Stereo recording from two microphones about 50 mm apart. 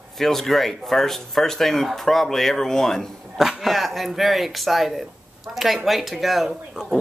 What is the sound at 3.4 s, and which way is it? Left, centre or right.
Speech, centre.